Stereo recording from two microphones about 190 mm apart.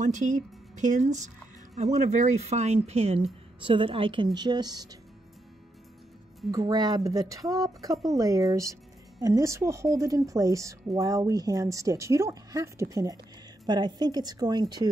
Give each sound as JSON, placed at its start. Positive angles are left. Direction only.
{"t": 0.0, "sound": "speech", "side_deg": -40}
{"t": 6.5, "sound": "speech", "side_deg": -20}